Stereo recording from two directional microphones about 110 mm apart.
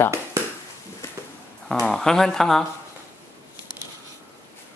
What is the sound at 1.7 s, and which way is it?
Speech, 5° left (ahead or behind).